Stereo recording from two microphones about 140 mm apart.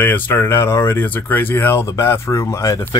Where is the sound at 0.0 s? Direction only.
15° left (ahead or behind).